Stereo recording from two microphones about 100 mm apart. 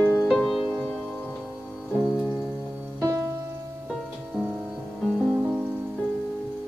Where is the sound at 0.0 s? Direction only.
15° left (ahead or behind).